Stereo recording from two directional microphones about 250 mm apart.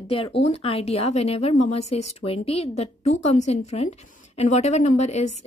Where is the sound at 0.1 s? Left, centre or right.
Left.